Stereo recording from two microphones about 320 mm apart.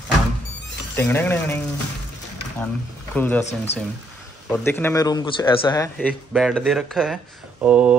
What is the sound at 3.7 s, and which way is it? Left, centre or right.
Speech, centre.